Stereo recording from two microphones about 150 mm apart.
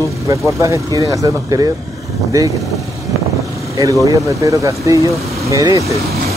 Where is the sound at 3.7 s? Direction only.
20° right (ahead or behind).